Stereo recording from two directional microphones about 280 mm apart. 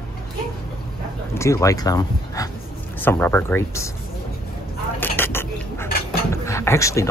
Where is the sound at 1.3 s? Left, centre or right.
Centre.